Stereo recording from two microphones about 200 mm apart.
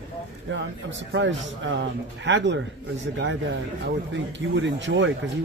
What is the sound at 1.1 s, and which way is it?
Speech, 65° right (ahead or behind).